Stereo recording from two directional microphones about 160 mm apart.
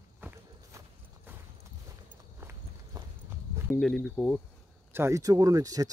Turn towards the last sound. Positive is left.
turn(degrees=-20)  # may be behind; listen again after turning